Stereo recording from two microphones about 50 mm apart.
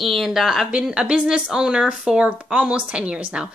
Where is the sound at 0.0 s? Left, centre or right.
Centre.